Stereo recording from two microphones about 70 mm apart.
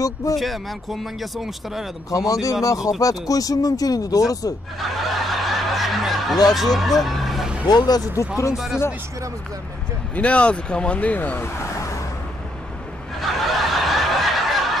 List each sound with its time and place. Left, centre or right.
0.0 s speech: left
0.4 s speech: centre
2.0 s speech: left
4.7 s snicker: centre
6.5 s speech: centre
7.6 s speech: left
8.5 s speech: centre
10.1 s speech: centre; by 12.0 s left
13.2 s snicker: centre